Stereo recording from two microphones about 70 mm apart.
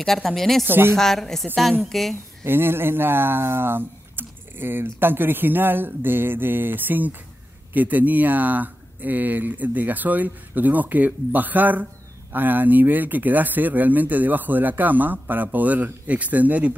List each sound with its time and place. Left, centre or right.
0.0 s a woman's voice: centre
0.7 s a woman's voice: right
0.9 s a woman's voice: centre
2.4 s speech: right